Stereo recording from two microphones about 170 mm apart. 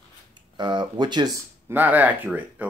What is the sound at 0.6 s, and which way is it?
Speech, 25° right (ahead or behind).